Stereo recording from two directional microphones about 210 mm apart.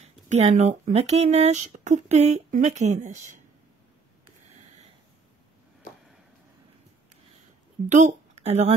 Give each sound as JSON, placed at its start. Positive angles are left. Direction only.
{"t": 0.0, "sound": "speech", "side_deg": -30}
{"t": 7.9, "sound": "speech", "side_deg": -35}